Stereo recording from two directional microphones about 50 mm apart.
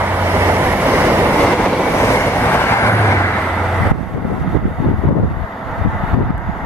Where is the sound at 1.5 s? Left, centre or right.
Left.